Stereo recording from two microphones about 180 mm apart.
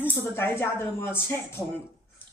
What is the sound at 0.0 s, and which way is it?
Speech, 10° left (ahead or behind).